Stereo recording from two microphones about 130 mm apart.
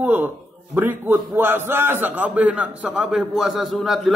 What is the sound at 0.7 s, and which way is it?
A man's voice, 15° right (ahead or behind).